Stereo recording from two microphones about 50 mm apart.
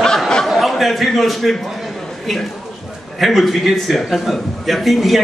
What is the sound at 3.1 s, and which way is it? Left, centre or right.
A man's voice, centre.